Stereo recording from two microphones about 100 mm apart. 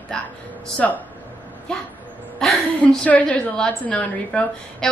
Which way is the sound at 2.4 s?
5° left (ahead or behind).